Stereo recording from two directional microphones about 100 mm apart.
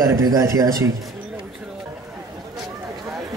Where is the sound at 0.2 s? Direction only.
35° right (ahead or behind).